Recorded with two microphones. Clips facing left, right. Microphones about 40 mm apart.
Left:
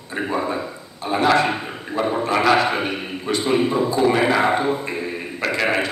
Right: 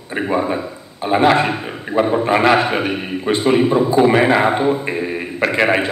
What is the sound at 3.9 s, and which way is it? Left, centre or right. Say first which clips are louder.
A man's voice: right 5 dB; right.